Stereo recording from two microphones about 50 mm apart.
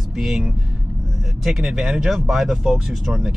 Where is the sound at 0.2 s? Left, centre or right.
Centre.